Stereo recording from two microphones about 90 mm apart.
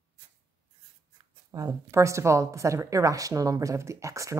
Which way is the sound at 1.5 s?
35° right (ahead or behind).